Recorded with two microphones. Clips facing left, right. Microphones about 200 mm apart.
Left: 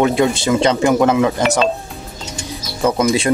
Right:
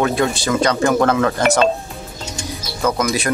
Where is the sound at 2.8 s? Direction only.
25° left (ahead or behind).